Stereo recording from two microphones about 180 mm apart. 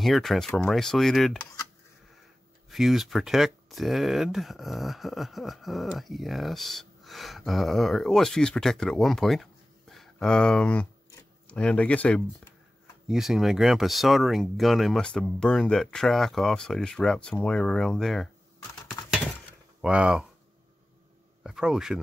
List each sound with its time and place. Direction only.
0.0 s speech: centre (ahead or behind)
2.7 s speech: centre (ahead or behind)
19.8 s speech: 5° right (ahead or behind)
21.4 s speech: 5° right (ahead or behind)